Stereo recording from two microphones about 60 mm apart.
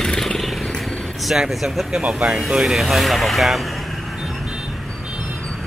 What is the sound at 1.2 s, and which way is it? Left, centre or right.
Speech, centre.